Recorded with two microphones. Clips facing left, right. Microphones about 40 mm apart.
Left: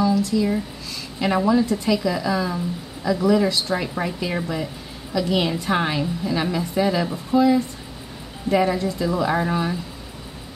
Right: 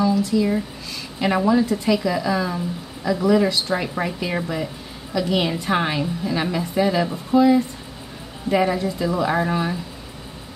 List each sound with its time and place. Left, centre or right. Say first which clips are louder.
0.0 s a woman's voice: right 1 dB; centre